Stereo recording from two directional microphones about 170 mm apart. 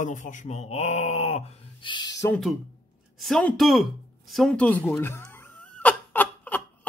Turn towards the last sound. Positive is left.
turn(degrees=10)  # may be behind; listen again after turning